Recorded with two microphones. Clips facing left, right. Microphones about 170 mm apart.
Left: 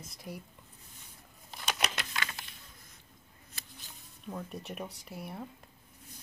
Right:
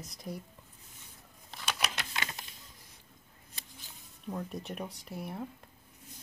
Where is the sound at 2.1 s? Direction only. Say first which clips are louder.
Even; 20° right (ahead or behind).